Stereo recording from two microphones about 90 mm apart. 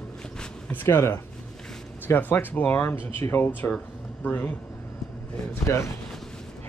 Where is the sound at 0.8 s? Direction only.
30° left (ahead or behind).